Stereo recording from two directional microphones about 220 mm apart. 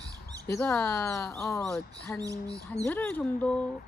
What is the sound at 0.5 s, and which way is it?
Speech, 10° left (ahead or behind).